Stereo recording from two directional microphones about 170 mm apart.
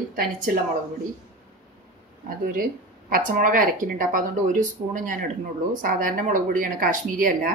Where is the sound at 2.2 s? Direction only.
55° right (ahead or behind).